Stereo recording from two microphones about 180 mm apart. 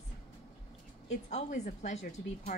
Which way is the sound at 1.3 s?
40° left (ahead or behind).